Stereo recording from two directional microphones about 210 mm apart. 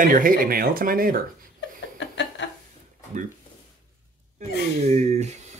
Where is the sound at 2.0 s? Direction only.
55° left (ahead or behind).